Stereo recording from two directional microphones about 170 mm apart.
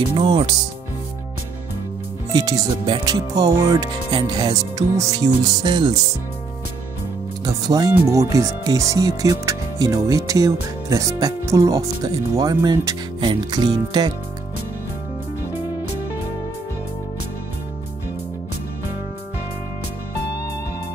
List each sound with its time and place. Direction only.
0.0 s speech: 30° right (ahead or behind)
2.3 s speech: 20° right (ahead or behind)
7.4 s speech: 20° right (ahead or behind)